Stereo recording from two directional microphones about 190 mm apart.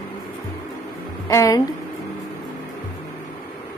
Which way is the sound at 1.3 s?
15° left (ahead or behind).